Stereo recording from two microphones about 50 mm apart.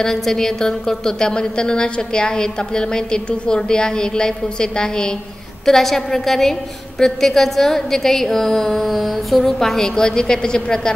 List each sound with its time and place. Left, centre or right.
0.0 s a woman's voice: centre